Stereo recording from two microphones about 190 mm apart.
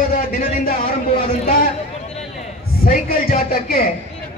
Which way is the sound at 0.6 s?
50° left (ahead or behind).